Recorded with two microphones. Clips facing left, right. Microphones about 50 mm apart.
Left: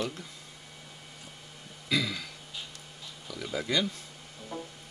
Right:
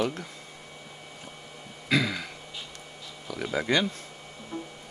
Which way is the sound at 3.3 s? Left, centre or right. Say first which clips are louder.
Right 5 dB; right.